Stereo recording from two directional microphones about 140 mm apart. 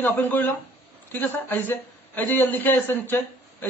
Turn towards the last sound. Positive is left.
turn(degrees=15)  # may be behind; listen again after turning